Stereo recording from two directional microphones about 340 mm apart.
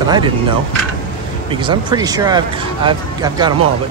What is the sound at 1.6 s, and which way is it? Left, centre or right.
Speech, centre.